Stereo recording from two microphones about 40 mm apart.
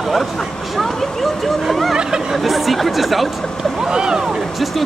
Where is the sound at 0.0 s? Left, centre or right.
Centre.